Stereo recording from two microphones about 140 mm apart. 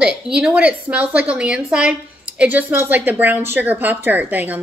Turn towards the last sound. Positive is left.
turn(degrees=-10)  # may be behind; listen again after turning